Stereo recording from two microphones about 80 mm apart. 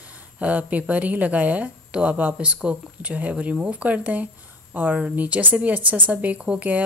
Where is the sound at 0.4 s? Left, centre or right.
Centre.